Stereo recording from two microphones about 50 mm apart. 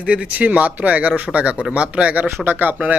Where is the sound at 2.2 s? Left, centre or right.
Right.